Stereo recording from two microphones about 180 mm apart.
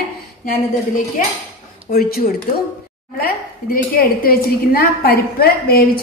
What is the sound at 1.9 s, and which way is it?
Speech, 55° left (ahead or behind).